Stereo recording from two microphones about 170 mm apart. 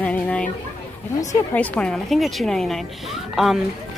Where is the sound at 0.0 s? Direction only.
5° left (ahead or behind).